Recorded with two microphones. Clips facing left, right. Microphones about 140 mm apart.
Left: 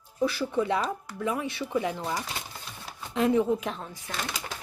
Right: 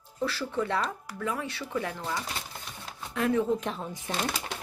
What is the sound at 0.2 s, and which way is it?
Speech, 15° left (ahead or behind).